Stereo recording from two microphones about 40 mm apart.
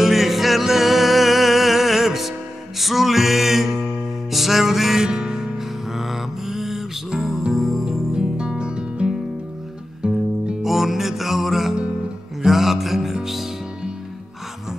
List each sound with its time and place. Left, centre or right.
0.0 s music: centre
8.1 s music: centre
10.6 s music: centre